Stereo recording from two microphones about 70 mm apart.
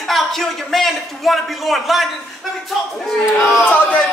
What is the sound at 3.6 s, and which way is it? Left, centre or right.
Speech, left.